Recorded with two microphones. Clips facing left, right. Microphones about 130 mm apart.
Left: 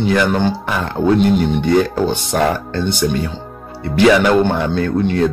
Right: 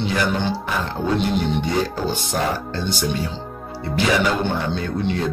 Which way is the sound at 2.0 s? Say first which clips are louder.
Left 6 dB; 65° left (ahead or behind).